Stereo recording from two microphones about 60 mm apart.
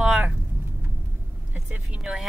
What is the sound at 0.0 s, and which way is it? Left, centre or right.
Vehicle, centre.